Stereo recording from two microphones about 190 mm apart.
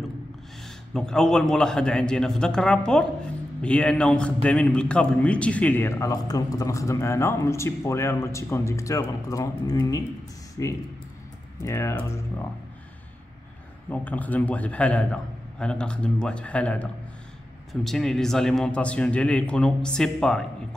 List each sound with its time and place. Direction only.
0.9 s a man's voice: 5° left (ahead or behind)
13.8 s a man's voice: 10° left (ahead or behind)